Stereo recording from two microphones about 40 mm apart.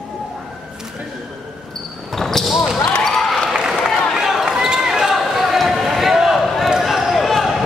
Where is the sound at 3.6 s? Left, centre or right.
Centre.